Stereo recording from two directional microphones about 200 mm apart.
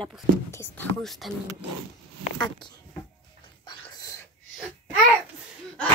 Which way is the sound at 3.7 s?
15° left (ahead or behind).